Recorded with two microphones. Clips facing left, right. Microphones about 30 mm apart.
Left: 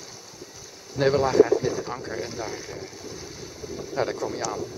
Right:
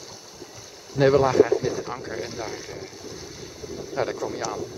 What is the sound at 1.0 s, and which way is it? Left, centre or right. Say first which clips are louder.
Speech: right 1 dB; centre.